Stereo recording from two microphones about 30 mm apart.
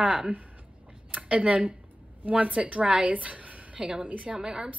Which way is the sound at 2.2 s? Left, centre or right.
Right.